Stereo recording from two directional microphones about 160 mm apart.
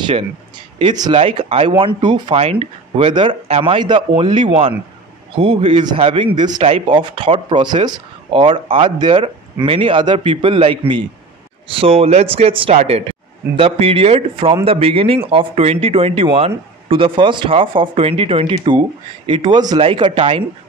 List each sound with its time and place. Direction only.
0.7 s speech: 30° right (ahead or behind)